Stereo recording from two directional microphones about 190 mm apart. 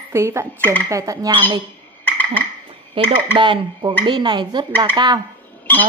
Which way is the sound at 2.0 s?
10° left (ahead or behind).